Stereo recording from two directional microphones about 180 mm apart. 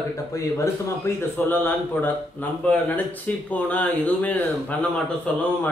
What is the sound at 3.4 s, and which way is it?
Speech, 10° left (ahead or behind).